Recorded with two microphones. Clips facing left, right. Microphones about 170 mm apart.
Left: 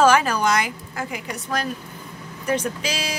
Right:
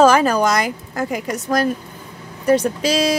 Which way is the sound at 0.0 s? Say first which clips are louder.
Right 4 dB; 40° right (ahead or behind).